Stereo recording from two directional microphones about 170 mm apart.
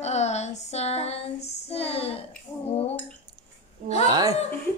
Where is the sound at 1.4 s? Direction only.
35° left (ahead or behind).